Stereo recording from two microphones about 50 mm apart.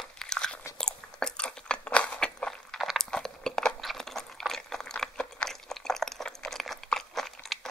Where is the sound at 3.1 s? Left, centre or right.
Centre.